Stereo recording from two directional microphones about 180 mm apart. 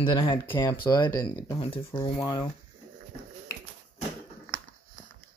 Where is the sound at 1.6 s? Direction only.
30° left (ahead or behind).